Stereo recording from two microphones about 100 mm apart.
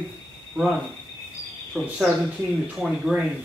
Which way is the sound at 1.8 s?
5° right (ahead or behind).